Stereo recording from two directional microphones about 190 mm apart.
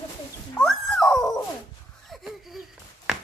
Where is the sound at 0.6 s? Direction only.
5° left (ahead or behind).